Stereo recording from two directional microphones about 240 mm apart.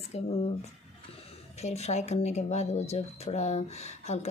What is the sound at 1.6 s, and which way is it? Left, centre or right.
Speech, left.